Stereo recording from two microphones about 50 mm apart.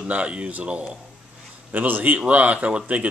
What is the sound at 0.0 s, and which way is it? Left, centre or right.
A man's voice, right.